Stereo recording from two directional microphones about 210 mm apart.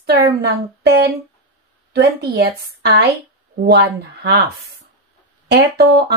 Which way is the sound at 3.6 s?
50° right (ahead or behind).